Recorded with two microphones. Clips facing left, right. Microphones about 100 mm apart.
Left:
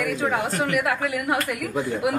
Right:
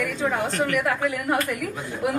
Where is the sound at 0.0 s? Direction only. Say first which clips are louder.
Left 1 dB; 5° left (ahead or behind).